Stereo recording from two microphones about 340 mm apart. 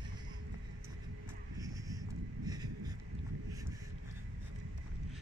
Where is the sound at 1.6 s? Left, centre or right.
Centre.